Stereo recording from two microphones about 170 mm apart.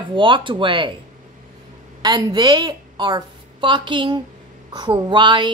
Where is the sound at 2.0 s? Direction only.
25° right (ahead or behind).